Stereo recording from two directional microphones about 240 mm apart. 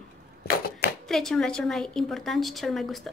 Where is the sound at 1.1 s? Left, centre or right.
Centre.